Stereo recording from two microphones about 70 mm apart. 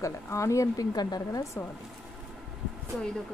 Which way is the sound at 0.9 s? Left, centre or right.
Left.